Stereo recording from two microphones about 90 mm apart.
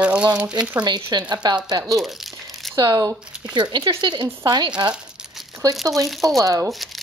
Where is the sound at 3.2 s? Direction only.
10° right (ahead or behind).